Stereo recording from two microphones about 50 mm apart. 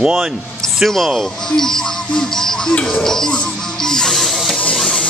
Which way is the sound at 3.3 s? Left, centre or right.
Centre.